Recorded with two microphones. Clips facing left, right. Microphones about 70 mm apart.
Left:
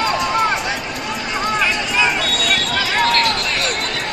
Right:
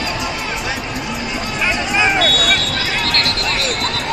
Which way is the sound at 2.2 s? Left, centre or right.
Right.